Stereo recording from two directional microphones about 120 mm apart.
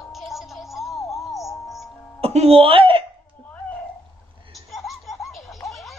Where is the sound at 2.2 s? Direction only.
55° right (ahead or behind).